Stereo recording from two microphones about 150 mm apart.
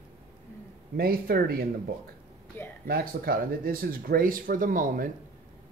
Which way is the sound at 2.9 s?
85° right.